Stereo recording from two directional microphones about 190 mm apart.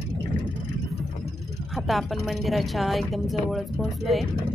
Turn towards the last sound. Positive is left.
turn(degrees=0)  # may be behind; listen again after turning